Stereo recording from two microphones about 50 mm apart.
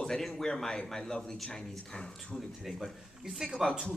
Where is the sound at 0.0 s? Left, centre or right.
Centre.